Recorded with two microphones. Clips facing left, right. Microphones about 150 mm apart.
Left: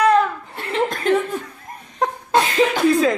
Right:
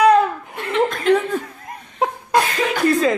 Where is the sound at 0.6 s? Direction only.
35° left (ahead or behind).